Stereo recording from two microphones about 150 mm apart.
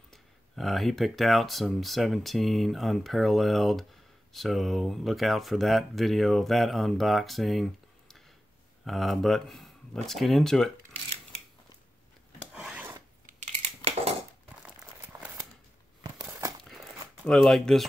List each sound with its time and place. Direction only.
0.1 s speech: centre (ahead or behind)
12.5 s filing: 5° right (ahead or behind)
13.3 s a sound: 50° right (ahead or behind)
14.8 s a sound: 10° right (ahead or behind)
16.0 s crumpling: 25° right (ahead or behind)
17.2 s speech: centre (ahead or behind)